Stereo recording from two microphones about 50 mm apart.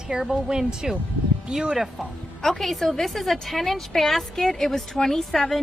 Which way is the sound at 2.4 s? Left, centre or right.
Centre.